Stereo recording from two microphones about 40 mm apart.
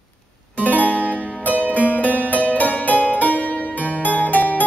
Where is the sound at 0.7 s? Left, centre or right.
Left.